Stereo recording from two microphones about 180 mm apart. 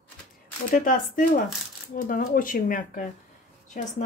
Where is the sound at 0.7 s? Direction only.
50° left (ahead or behind).